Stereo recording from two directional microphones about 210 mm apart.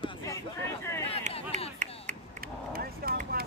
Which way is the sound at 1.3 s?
35° right (ahead or behind).